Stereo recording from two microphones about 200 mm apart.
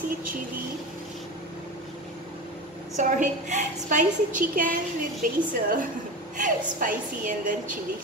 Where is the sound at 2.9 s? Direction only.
35° right (ahead or behind).